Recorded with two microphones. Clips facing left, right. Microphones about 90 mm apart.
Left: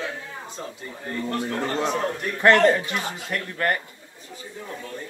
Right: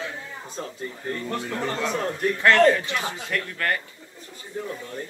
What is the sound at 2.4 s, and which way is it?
Speech, 25° left (ahead or behind).